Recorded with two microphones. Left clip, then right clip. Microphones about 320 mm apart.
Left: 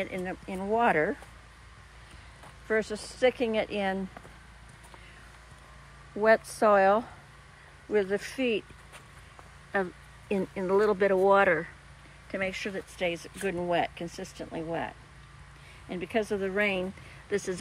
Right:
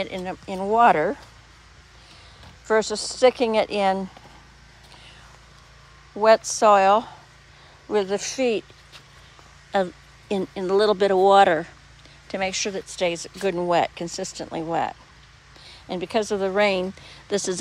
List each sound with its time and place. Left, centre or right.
0.0 s speech: centre
2.7 s speech: centre
6.1 s speech: centre
9.7 s speech: centre